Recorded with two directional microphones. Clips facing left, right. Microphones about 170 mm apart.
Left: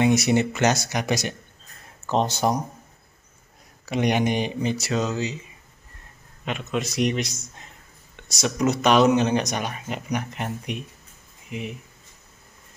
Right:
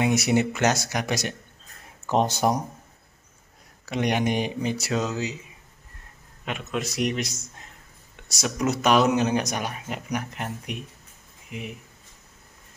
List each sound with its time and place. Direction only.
0.0 s speech: 5° right (ahead or behind)
2.0 s speech: 10° right (ahead or behind)
3.9 s speech: centre (ahead or behind)
6.4 s speech: 5° right (ahead or behind)